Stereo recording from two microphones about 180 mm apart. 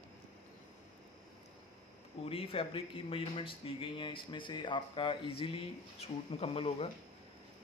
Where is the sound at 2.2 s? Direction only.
30° left (ahead or behind).